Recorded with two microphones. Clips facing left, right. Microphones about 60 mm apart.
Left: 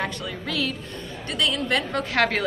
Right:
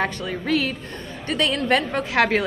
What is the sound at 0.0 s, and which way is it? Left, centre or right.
A woman's voice, right.